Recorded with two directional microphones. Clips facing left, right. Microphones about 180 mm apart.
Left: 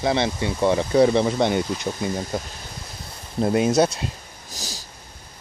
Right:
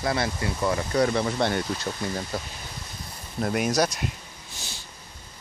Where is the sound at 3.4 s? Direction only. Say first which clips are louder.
Left 6 dB; 25° left (ahead or behind).